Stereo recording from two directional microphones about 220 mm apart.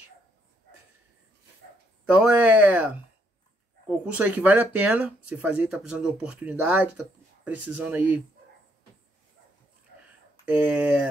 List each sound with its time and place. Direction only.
2.0 s speech: 5° right (ahead or behind)
4.0 s speech: 5° right (ahead or behind)
10.5 s speech: 5° right (ahead or behind)